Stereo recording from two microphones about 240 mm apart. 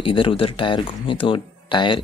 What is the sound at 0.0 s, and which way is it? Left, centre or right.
Speech, left.